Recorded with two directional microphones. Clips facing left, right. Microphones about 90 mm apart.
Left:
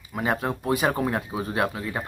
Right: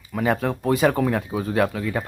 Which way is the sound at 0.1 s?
20° left (ahead or behind).